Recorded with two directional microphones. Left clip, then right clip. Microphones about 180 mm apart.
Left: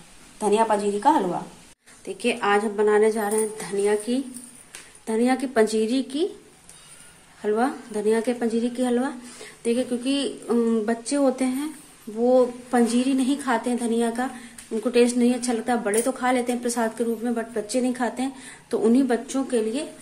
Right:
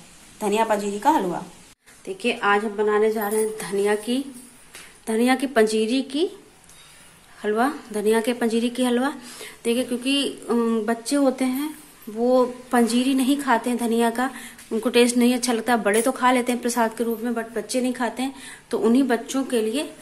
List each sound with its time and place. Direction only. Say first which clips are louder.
0.4 s a woman's voice: left 1 dB; 5° left (ahead or behind)
7.4 s a woman's voice: right 1 dB; 5° right (ahead or behind)